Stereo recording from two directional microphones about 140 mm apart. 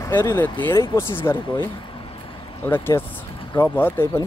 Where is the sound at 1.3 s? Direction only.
35° left (ahead or behind).